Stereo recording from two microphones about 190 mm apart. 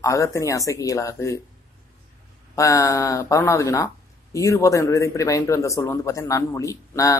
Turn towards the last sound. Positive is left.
turn(degrees=15)  # may be behind; listen again after turning